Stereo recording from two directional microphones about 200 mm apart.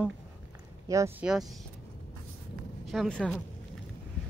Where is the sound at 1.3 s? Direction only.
Centre (ahead or behind).